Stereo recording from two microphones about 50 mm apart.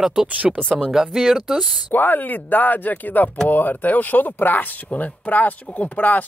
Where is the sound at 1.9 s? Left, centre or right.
Left.